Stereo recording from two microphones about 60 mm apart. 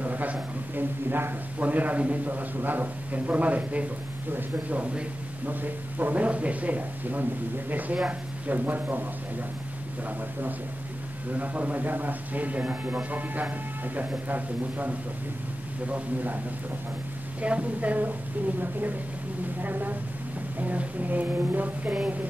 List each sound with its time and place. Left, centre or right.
0.0 s a man's voice: right
11.3 s a man's voice: right
17.4 s a man's voice: right